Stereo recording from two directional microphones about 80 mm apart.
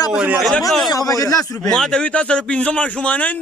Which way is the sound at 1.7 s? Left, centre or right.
Centre.